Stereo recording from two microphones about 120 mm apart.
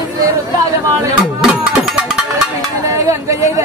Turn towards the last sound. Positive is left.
turn(degrees=-25)  # may be behind; listen again after turning